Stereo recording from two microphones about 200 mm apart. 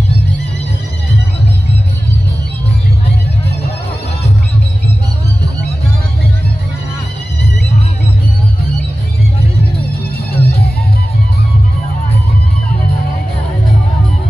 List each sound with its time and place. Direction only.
10.3 s music: 55° left (ahead or behind)